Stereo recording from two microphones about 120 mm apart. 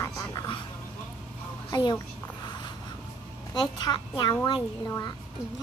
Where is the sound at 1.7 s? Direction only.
35° left (ahead or behind).